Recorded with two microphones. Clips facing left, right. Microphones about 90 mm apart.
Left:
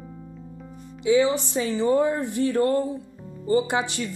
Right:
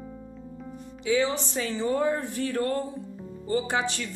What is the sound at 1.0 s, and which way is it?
Speech, 15° left (ahead or behind).